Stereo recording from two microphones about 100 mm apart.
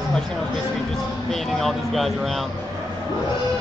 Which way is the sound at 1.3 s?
Centre (ahead or behind).